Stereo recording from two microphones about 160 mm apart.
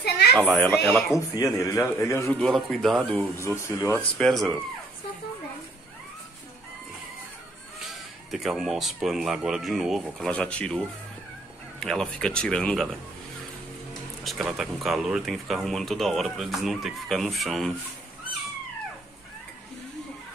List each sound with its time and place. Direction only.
0.5 s speech: centre (ahead or behind)
1.1 s a man's voice: 20° left (ahead or behind)
2.2 s speech: centre (ahead or behind)
3.2 s speech: 15° left (ahead or behind)
4.2 s speech: centre (ahead or behind)
7.8 s speech: centre (ahead or behind)
14.2 s speech: centre (ahead or behind)